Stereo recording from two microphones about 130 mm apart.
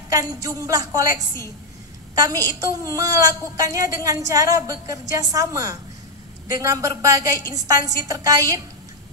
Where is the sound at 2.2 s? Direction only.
25° right (ahead or behind).